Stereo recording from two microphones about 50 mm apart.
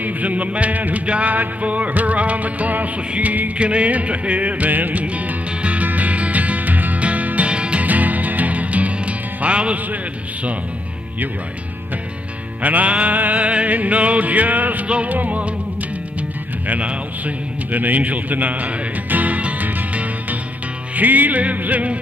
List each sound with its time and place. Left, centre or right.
0.0 s music: right
7.8 s music: right
12.6 s music: right